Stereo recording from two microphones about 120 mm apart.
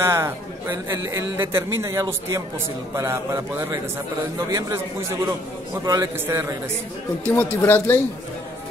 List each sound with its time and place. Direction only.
0.0 s a man's voice: 20° right (ahead or behind)
7.2 s speech: 15° left (ahead or behind)